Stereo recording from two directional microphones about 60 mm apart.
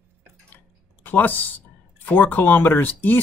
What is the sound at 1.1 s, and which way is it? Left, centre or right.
Speech, left.